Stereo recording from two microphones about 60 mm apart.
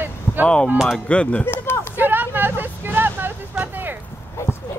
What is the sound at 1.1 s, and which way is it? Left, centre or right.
Speech, centre.